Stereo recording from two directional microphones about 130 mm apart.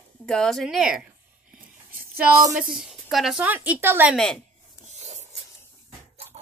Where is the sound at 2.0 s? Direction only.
15° right (ahead or behind).